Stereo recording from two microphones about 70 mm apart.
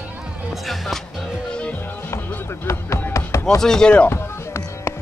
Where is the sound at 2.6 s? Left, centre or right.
Left.